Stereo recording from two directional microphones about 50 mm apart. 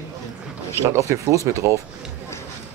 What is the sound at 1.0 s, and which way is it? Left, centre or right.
Speech, right.